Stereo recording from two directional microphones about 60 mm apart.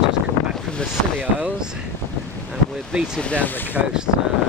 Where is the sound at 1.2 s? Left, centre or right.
Right.